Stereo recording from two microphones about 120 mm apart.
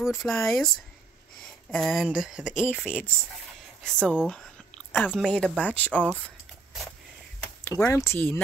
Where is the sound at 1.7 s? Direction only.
Centre (ahead or behind).